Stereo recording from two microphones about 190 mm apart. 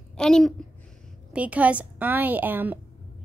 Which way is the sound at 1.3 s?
5° right (ahead or behind).